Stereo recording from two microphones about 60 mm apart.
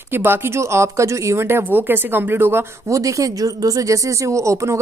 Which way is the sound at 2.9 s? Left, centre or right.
Right.